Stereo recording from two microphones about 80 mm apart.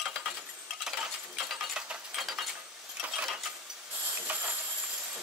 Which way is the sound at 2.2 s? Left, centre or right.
Centre.